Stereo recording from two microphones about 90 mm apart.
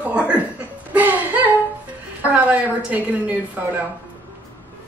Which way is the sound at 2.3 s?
15° right (ahead or behind).